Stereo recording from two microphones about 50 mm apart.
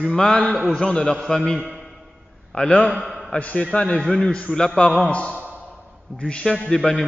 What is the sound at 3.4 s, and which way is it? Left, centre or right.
Speech, left.